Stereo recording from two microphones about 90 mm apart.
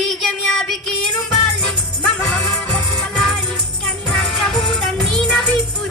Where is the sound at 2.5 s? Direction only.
10° left (ahead or behind).